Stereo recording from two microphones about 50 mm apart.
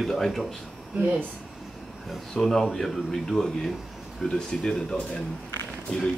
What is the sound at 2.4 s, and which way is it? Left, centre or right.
Speech, centre.